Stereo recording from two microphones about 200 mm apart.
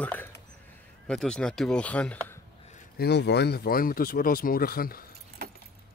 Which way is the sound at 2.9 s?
55° left (ahead or behind).